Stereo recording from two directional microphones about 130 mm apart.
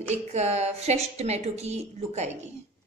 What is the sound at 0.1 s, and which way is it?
A woman's voice, 60° right (ahead or behind).